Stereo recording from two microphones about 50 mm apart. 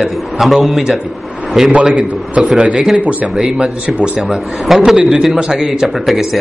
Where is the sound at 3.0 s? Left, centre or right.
Right.